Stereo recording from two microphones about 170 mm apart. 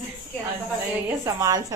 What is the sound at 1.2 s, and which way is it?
Speech, 20° right (ahead or behind).